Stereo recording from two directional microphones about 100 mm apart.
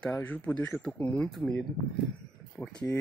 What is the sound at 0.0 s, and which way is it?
Speech, 15° left (ahead or behind).